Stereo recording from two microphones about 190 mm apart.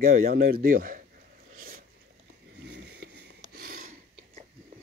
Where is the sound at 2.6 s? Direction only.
60° right (ahead or behind).